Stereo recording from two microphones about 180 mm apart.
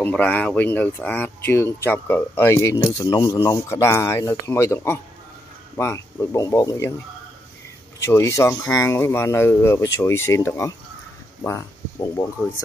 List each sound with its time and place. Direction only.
0.0 s speech: 10° left (ahead or behind)
8.0 s speech: 15° left (ahead or behind)